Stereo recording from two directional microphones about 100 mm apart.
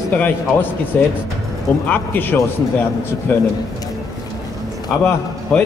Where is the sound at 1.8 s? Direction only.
20° left (ahead or behind).